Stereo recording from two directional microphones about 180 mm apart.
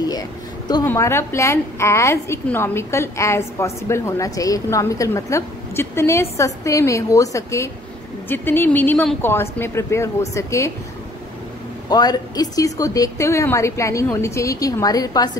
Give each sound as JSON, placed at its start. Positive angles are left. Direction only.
{"t": 0.8, "sound": "a woman's voice", "side_deg": 15}
{"t": 11.9, "sound": "a woman's voice", "side_deg": 20}